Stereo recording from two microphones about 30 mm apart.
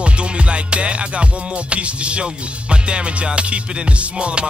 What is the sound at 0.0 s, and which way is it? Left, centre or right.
Music, right.